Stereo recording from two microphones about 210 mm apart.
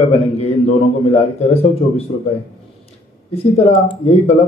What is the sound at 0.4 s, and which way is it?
Speech, 30° left (ahead or behind).